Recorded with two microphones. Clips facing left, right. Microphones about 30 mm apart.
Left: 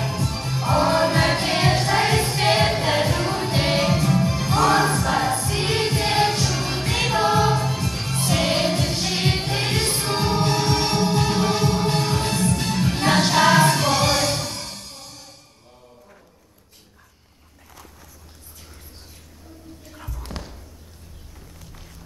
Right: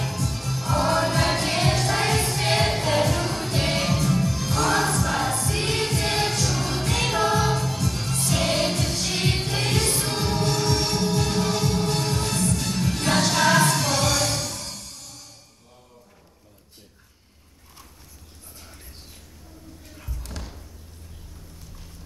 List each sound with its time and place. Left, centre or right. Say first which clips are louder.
0.0 s music: left 3 dB; left
4.9 s choir: left 3 dB; left
5.4 s music: left 3 dB; centre; by 15.3 s left
20.0 s basketball bounce: left 4 dB; left